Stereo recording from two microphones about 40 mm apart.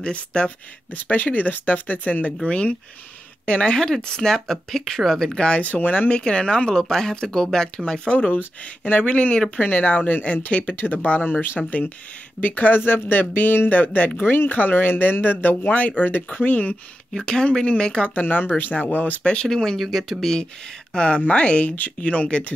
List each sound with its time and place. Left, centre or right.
0.0 s speech: left
1.0 s speech: left; by 5.4 s centre
5.6 s speech: left
6.7 s speech: centre
8.3 s speech: left
9.6 s speech: left
12.8 s speech: left
14.2 s speech: left
14.5 s speech: left
17.2 s speech: left
18.7 s speech: left
19.4 s speech: centre
19.8 s speech: centre
20.9 s speech: left